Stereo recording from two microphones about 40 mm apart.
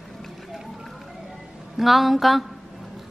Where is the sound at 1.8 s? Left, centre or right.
Centre.